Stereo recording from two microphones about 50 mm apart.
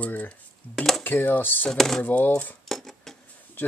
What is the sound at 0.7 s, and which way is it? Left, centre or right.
Speech, centre.